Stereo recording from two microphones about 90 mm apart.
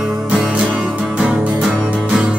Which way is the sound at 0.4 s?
15° right (ahead or behind).